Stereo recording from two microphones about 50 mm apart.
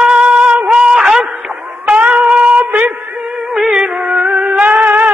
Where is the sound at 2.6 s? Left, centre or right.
Right.